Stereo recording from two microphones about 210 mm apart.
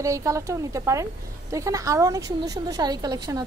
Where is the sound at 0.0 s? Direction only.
15° right (ahead or behind).